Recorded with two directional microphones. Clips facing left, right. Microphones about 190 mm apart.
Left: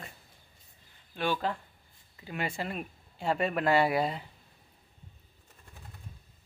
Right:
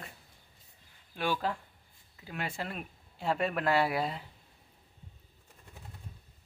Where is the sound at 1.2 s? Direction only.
5° right (ahead or behind).